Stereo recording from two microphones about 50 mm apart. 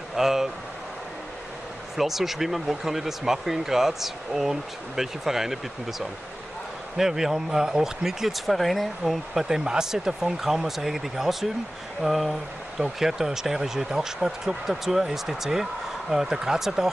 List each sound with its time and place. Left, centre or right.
0.1 s vehicle: centre
2.0 s speech: centre